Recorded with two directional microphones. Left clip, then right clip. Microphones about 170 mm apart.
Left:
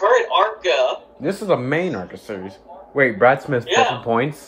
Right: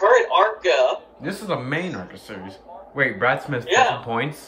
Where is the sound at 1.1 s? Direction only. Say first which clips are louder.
Left 7 dB; 40° left (ahead or behind).